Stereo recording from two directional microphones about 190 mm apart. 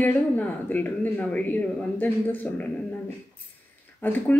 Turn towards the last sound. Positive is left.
turn(degrees=10)  # may be behind; listen again after turning